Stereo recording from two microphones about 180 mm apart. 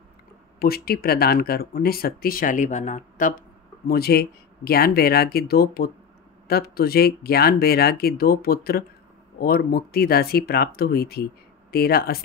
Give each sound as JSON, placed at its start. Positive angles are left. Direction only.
{"t": 0.6, "sound": "speech", "side_deg": 60}